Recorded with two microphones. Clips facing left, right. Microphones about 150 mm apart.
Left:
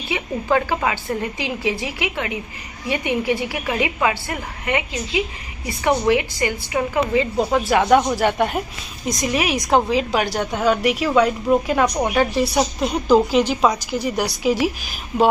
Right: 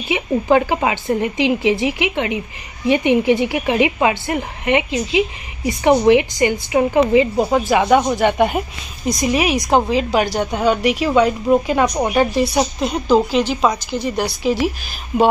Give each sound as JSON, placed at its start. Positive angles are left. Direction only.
{"t": 0.1, "sound": "a woman's voice", "side_deg": -20}
{"t": 7.3, "sound": "speech", "side_deg": -5}